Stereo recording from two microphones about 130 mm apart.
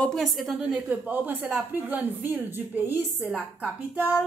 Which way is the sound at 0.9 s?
15° right (ahead or behind).